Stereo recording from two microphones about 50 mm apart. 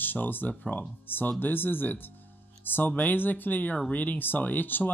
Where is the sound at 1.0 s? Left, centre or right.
Left.